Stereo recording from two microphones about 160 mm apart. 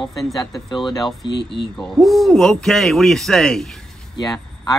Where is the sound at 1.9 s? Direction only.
Centre (ahead or behind).